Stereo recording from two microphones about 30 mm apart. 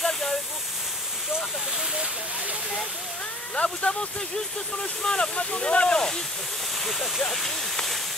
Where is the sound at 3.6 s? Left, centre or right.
Left.